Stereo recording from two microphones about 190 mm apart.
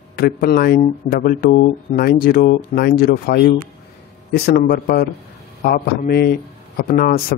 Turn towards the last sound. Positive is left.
turn(degrees=50)  # may be behind; listen again after turning